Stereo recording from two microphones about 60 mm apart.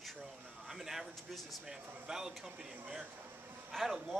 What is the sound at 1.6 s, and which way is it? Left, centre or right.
A man's voice, centre.